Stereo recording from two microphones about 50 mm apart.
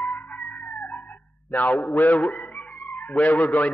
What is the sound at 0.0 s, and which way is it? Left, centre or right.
Chicken, left.